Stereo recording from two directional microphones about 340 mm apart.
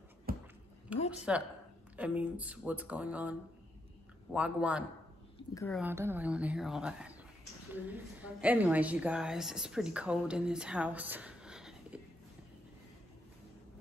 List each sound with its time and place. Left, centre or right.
0.3 s a sound: right
1.3 s a woman's voice: centre
5.5 s speech: centre
5.8 s a woman's voice: centre